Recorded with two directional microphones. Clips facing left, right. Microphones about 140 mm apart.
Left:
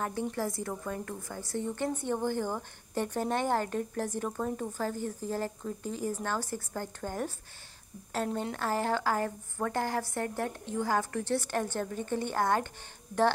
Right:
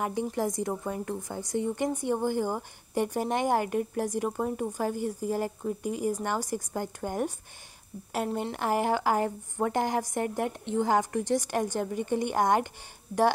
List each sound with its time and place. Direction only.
0.0 s speech: 15° right (ahead or behind)